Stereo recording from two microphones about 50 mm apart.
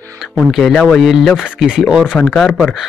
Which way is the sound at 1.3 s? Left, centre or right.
Centre.